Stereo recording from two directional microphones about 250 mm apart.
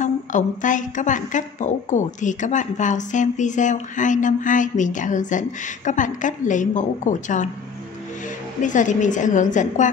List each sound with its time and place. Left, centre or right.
0.0 s a woman's voice: left
8.6 s a woman's voice: left